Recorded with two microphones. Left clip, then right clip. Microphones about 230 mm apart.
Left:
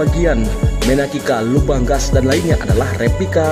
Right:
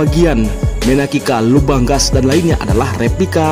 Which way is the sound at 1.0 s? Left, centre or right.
Right.